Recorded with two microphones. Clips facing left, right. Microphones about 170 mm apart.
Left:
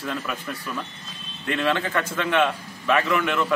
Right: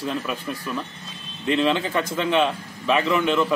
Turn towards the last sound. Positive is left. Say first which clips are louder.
# right 3 dB
turn(degrees=-25)  # may be behind; listen again after turning